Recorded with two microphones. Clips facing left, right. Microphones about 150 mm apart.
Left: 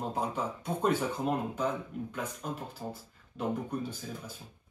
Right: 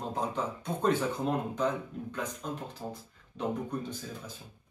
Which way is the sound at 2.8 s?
5° right (ahead or behind).